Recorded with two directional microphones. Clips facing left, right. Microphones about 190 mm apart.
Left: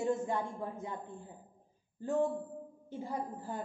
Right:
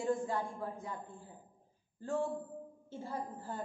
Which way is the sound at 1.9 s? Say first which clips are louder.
Left 4 dB; 15° left (ahead or behind).